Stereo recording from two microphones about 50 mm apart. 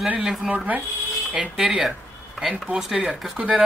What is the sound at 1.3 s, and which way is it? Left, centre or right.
Speech, right.